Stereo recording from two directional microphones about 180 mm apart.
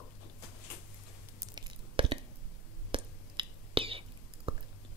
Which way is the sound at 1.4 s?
25° right (ahead or behind).